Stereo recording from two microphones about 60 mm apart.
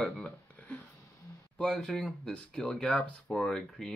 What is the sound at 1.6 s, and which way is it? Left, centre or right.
Speech, centre.